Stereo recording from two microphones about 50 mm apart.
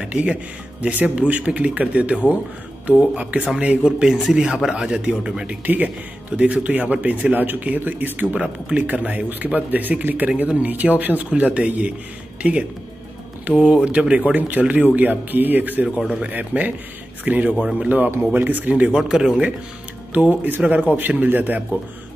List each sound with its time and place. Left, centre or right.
0.0 s a man's voice: right
13.6 s speech: centre
13.8 s a man's voice: right
18.9 s speech: centre
20.2 s a man's voice: right